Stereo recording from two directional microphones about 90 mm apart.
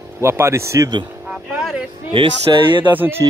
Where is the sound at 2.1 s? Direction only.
70° right (ahead or behind).